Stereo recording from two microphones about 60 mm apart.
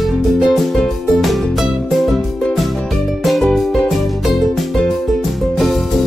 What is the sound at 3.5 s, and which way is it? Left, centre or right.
Music, centre.